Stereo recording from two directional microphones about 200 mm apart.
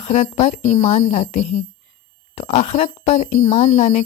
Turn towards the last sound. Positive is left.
turn(degrees=35)  # may be behind; listen again after turning